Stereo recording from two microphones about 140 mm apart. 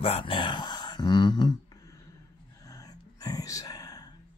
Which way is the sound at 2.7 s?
25° left (ahead or behind).